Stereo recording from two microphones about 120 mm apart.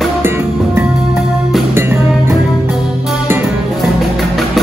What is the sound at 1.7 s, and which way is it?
Music, 20° right (ahead or behind).